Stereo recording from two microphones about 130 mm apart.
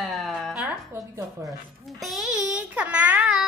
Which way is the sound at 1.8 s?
Centre (ahead or behind).